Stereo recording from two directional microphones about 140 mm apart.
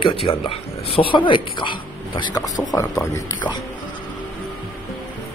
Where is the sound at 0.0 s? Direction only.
40° left (ahead or behind); by 3.3 s 20° left (ahead or behind).